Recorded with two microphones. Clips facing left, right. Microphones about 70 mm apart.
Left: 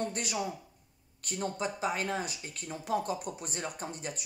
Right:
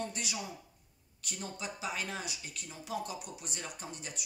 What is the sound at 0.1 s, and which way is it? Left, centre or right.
Speech, left.